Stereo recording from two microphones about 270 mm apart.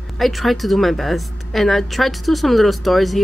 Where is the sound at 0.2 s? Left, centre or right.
Centre.